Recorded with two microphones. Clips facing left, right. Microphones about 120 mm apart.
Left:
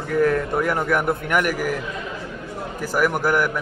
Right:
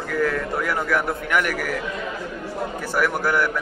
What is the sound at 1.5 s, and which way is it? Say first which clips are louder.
Speech: left 2 dB; 15° left (ahead or behind).